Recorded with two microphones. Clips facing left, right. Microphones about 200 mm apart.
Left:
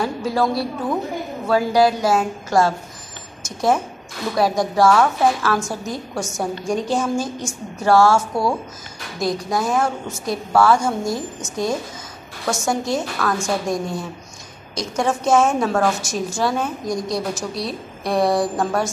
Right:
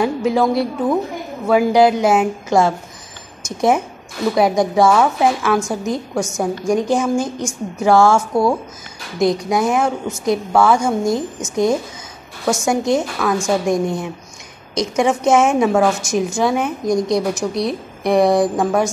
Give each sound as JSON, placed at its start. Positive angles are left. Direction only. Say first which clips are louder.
{"t": 0.0, "sound": "a woman's voice", "louder": "right 4 dB", "side_deg": -20}
{"t": 4.9, "sound": "a woman's voice", "louder": "right 2 dB", "side_deg": -10}
{"t": 5.4, "sound": "a woman's voice", "louder": "right 4 dB", "side_deg": -20}
{"t": 9.2, "sound": "a woman's voice", "louder": "right 5 dB", "side_deg": -20}